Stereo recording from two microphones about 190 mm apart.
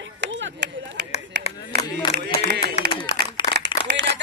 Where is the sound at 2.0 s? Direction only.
25° left (ahead or behind).